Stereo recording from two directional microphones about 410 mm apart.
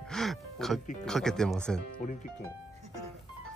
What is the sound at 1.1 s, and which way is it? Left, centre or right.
Speech, centre.